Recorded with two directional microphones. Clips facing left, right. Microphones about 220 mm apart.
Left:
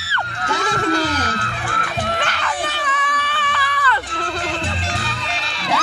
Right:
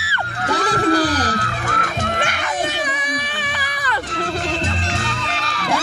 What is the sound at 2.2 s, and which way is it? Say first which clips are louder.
Baby cry: right 2 dB; 15° right (ahead or behind).